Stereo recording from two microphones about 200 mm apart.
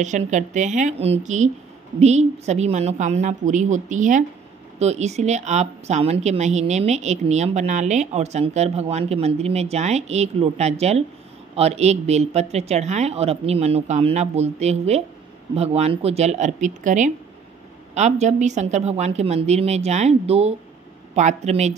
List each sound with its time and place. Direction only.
0.0 s speech: 40° right (ahead or behind)